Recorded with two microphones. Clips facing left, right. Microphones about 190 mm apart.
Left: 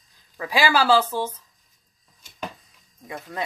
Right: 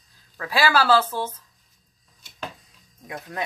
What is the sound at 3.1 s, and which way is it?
Speech, centre (ahead or behind).